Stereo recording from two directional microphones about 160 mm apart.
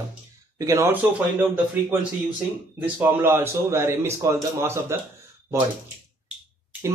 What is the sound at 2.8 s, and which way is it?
Speech, 15° right (ahead or behind).